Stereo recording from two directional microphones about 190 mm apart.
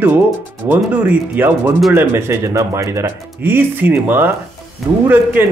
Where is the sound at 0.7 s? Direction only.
10° right (ahead or behind).